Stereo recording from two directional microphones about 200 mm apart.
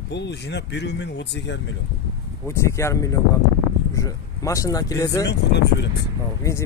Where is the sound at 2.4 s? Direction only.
15° left (ahead or behind).